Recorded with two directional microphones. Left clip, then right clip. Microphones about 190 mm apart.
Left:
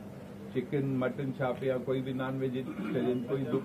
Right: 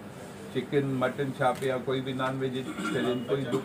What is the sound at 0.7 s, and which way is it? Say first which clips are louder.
Speech: right 6 dB; 20° right (ahead or behind).